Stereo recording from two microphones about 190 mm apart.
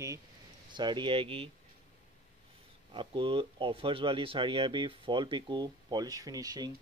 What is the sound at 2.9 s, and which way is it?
Speech, 25° right (ahead or behind).